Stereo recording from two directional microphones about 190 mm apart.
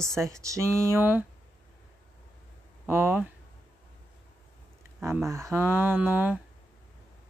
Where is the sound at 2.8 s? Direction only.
10° right (ahead or behind).